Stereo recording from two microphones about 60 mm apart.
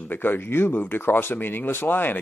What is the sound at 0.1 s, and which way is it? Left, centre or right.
Speech, left.